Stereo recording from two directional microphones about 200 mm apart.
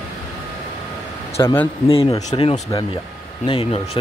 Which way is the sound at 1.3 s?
10° left (ahead or behind).